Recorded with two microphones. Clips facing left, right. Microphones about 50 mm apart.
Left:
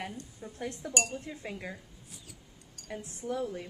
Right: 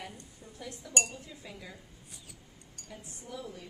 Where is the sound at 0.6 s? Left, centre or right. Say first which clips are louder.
Left 2 dB; left.